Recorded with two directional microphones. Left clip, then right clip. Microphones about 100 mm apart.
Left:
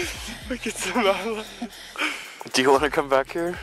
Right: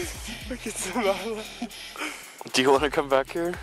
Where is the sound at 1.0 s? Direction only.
45° left (ahead or behind).